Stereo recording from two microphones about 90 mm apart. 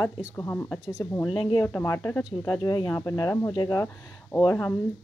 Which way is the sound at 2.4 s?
45° left (ahead or behind).